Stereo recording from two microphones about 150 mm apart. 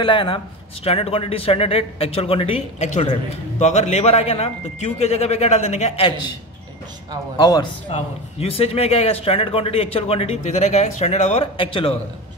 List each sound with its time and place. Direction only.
0.0 s a man's voice: 35° left (ahead or behind)
7.3 s a man's voice: 25° left (ahead or behind)
7.9 s a man's voice: 45° left (ahead or behind)